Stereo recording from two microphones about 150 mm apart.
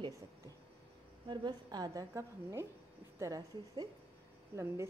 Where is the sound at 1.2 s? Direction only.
30° right (ahead or behind).